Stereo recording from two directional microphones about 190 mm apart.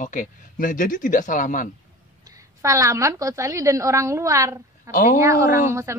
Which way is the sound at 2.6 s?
15° right (ahead or behind).